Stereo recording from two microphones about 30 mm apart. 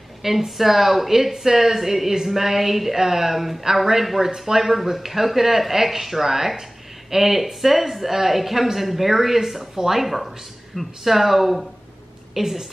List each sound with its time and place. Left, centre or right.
0.2 s speech: centre